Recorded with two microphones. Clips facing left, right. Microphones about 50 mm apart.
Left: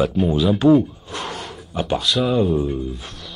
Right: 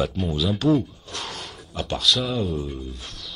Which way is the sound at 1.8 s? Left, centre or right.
Centre.